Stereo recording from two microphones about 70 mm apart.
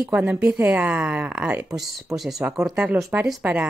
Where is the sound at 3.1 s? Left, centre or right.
Right.